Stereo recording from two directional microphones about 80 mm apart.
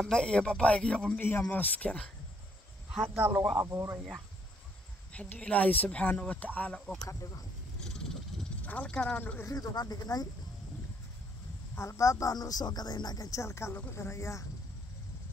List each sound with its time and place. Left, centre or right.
0.0 s speech: centre
3.2 s speech: right
5.1 s speech: centre
8.6 s speech: centre
9.5 s speech: left
11.7 s speech: left